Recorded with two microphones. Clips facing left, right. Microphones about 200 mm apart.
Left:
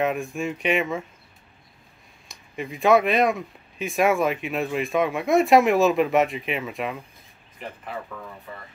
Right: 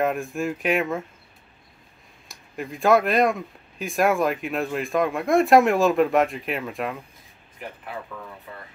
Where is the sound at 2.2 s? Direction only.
Centre (ahead or behind).